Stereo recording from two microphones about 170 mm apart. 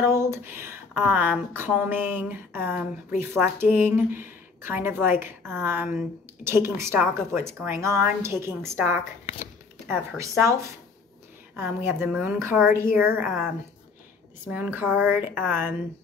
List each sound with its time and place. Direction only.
0.0 s a woman's voice: 15° right (ahead or behind)
14.5 s a woman's voice: 10° right (ahead or behind)